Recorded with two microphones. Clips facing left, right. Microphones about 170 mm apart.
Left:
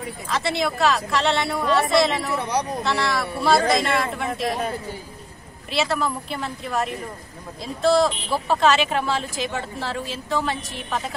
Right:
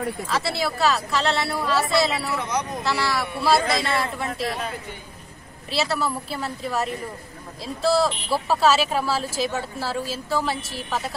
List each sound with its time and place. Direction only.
0.6 s speech: centre (ahead or behind)
2.3 s speech: 35° left (ahead or behind)
2.8 s speech: centre (ahead or behind)
4.5 s speech: 35° left (ahead or behind)
5.7 s a woman's voice: centre (ahead or behind)